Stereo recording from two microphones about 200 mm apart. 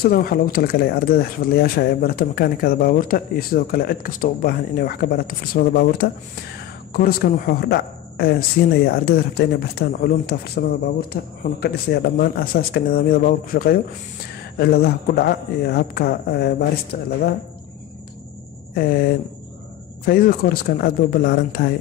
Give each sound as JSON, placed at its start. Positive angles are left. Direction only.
{"t": 0.0, "sound": "speech", "side_deg": 50}
{"t": 20.1, "sound": "speech", "side_deg": 45}